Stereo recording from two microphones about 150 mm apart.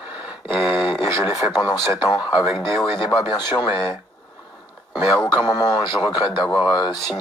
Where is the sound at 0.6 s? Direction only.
5° right (ahead or behind).